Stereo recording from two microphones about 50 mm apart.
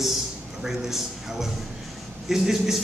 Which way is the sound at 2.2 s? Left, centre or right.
Centre.